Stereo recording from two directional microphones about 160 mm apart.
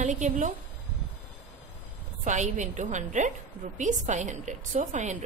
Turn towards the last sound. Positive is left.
turn(degrees=-50)  # may be behind; listen again after turning